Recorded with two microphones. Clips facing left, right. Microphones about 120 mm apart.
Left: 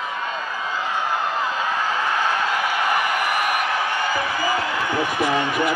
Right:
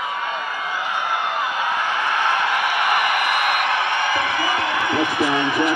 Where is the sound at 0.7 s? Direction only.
65° right (ahead or behind).